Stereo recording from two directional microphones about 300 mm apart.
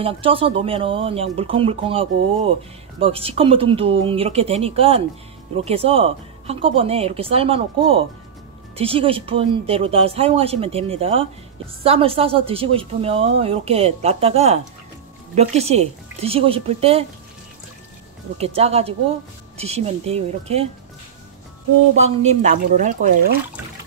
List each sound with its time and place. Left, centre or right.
0.0 s speech: centre
18.4 s speech: centre
21.9 s speech: right